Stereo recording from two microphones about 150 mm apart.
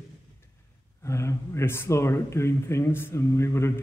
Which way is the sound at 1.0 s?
20° left (ahead or behind).